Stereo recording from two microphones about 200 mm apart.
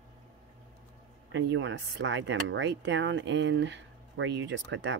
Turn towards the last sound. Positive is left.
turn(degrees=-65)  # may be behind; listen again after turning